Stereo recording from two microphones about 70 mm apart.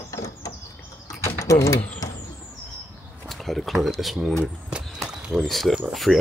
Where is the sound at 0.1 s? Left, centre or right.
Left.